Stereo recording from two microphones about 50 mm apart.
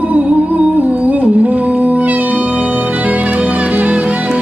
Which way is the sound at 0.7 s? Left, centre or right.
Right.